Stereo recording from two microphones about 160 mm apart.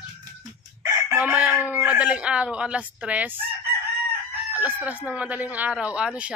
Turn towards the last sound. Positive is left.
turn(degrees=-10)  # may be behind; listen again after turning